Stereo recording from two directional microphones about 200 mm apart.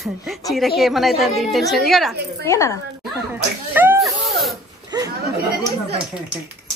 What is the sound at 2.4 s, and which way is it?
Speech, 15° left (ahead or behind).